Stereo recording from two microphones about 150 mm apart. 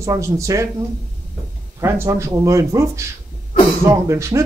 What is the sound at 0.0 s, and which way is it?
Speech, 20° right (ahead or behind).